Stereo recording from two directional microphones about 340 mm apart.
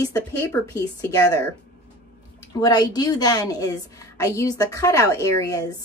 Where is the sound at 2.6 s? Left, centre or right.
Centre.